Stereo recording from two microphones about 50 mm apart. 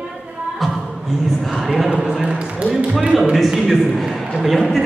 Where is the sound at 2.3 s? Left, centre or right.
Right.